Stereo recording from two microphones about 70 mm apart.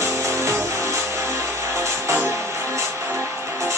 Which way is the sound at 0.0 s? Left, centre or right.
Right.